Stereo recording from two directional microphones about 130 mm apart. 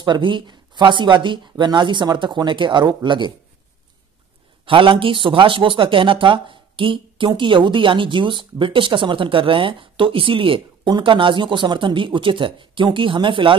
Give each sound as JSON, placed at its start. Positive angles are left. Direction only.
{"t": 0.0, "sound": "speech", "side_deg": -40}
{"t": 4.6, "sound": "speech", "side_deg": -40}